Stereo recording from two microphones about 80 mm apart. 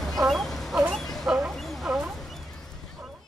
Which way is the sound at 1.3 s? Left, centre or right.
Centre.